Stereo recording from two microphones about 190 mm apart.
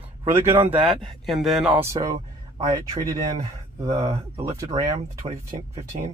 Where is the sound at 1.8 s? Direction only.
15° right (ahead or behind).